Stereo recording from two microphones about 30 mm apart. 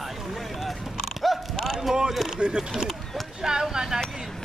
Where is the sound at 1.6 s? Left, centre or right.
Centre.